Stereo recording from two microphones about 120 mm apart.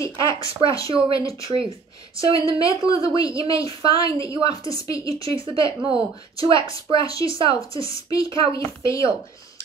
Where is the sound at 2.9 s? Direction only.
45° right (ahead or behind).